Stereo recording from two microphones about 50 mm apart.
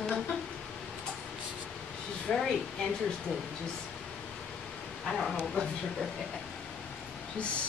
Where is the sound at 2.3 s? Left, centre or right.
Centre.